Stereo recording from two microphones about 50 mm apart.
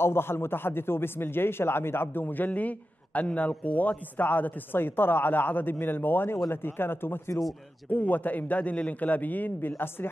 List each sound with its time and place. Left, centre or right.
0.0 s a man's voice: left
7.9 s a man's voice: left